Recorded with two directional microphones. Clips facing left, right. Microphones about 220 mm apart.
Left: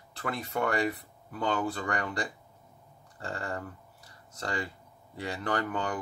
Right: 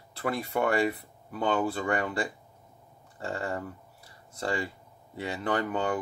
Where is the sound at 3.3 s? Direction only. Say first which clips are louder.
Right 3 dB; 25° right (ahead or behind).